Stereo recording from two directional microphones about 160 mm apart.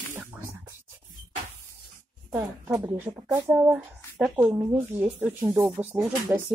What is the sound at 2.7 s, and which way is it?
A woman's voice, 20° right (ahead or behind).